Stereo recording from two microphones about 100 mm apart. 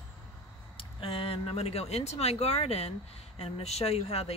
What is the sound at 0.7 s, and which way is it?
Speech, 65° left (ahead or behind).